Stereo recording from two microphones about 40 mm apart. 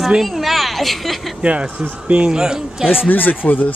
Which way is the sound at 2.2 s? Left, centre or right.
Centre.